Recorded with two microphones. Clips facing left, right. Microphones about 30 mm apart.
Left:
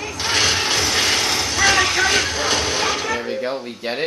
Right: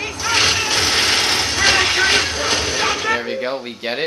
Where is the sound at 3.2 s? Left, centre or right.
Right.